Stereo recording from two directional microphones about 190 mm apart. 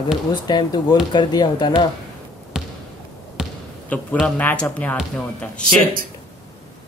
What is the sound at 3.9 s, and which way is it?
Speech, 10° left (ahead or behind).